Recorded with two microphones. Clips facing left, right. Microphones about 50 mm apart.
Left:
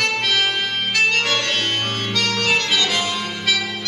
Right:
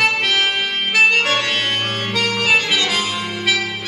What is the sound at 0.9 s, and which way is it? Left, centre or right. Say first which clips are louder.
Music: right 4 dB; centre.